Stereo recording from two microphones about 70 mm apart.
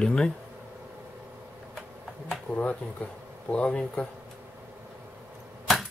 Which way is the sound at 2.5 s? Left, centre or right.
Centre.